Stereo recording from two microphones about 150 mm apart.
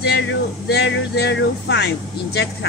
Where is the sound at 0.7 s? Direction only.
90° left.